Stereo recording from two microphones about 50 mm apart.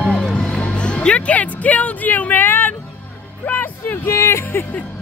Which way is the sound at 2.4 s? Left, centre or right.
Left.